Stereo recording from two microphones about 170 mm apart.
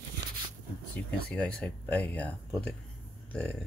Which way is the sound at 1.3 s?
5° left (ahead or behind).